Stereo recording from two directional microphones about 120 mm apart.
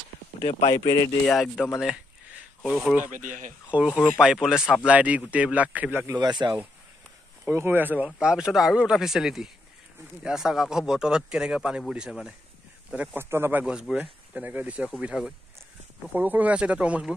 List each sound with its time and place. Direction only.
0.4 s speech: 55° left (ahead or behind)
0.7 s speech: 35° left (ahead or behind)
1.2 s speech: centre (ahead or behind)
3.1 s speech: 90° right
4.0 s speech: 5° right (ahead or behind)
6.1 s speech: 40° right (ahead or behind)
7.4 s speech: 20° right (ahead or behind)